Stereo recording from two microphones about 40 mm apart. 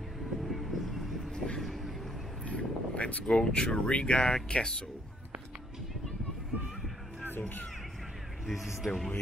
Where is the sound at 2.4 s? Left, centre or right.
Left.